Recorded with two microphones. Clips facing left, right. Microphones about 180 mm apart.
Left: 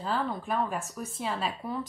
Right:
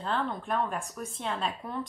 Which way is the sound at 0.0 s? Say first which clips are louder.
Left 1 dB; 5° left (ahead or behind).